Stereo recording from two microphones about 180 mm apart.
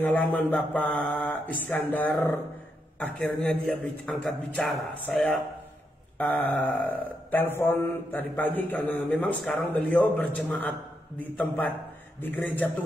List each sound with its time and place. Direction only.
0.0 s speech: 10° left (ahead or behind)